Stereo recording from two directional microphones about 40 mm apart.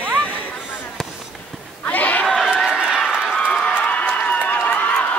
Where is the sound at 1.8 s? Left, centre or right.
Left.